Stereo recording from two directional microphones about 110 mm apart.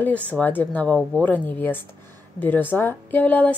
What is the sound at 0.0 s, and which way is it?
A woman's voice, 15° left (ahead or behind).